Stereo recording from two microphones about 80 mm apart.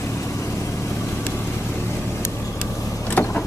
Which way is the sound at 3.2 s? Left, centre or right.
Left.